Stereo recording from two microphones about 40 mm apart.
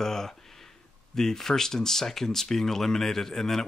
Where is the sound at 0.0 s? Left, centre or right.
Centre.